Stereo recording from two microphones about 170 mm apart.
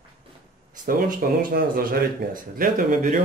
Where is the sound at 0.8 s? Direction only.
60° right (ahead or behind).